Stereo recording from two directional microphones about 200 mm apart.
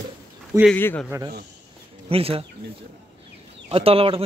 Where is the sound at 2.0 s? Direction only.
30° right (ahead or behind).